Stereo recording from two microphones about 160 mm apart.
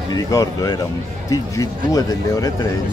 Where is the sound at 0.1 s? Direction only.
20° left (ahead or behind).